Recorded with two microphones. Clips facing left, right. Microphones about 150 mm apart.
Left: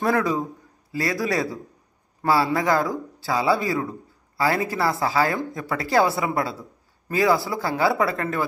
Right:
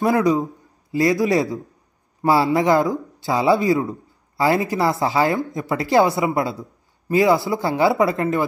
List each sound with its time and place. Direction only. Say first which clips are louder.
0.0 s speech: right 4 dB; 20° right (ahead or behind)